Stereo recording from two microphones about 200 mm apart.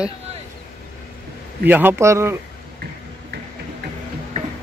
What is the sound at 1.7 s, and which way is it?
Speech, 10° right (ahead or behind).